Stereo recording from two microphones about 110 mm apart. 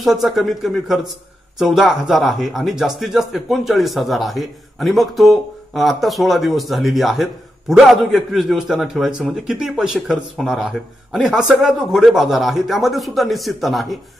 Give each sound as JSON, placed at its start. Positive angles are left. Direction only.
{"t": 0.0, "sound": "speech", "side_deg": 0}